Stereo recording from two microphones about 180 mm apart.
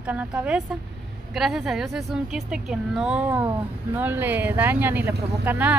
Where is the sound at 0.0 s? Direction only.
10° right (ahead or behind).